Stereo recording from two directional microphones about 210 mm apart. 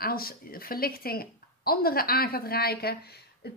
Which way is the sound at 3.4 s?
50° left (ahead or behind).